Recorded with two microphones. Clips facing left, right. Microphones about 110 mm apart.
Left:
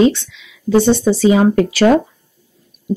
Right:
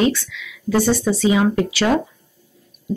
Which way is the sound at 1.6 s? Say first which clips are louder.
Left 7 dB; 50° left (ahead or behind).